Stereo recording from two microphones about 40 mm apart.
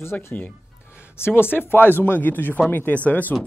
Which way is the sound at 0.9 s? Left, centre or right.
Left.